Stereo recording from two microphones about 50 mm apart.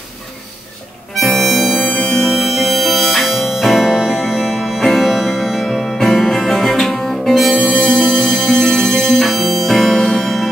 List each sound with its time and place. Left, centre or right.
1.1 s harmonica: centre
1.8 s music: left
2.2 s music: centre